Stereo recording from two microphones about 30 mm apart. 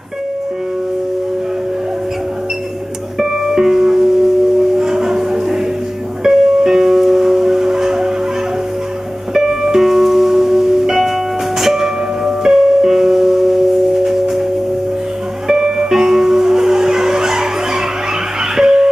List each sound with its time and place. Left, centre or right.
3.2 s music: centre
9.3 s music: centre
15.4 s music: centre